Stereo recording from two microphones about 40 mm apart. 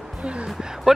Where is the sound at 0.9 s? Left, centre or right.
Centre.